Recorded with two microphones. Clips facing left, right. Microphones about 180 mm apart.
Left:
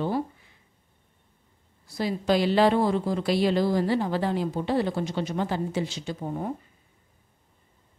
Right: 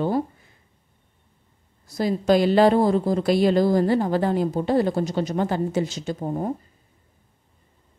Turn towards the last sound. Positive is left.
turn(degrees=-40)  # may be behind; listen again after turning